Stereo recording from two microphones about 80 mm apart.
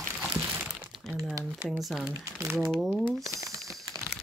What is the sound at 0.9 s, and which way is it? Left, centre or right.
Crumpling, centre.